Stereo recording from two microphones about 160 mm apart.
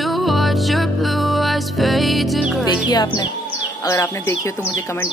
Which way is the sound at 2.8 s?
25° left (ahead or behind).